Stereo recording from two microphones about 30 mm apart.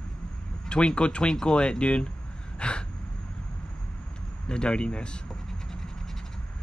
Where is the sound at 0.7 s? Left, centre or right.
Left.